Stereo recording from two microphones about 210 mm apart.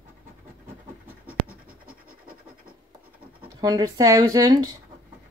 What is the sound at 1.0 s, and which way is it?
Scratch, 10° right (ahead or behind).